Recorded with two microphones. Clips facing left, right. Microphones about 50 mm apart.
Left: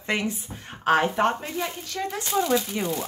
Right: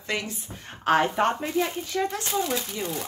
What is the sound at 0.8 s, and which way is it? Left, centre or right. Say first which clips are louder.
Speech: left 1 dB; centre.